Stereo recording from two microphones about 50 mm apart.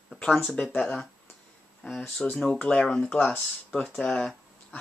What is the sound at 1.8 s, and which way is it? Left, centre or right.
Speech, centre.